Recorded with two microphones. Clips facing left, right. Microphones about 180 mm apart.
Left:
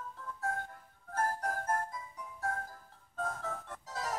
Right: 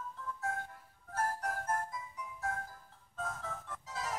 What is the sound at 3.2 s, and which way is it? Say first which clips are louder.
Music: left 3 dB; 40° left (ahead or behind).